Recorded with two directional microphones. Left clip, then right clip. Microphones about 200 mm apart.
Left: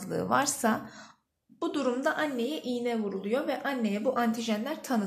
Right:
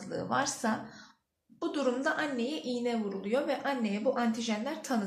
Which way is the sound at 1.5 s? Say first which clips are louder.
Left 1 dB; 30° left (ahead or behind).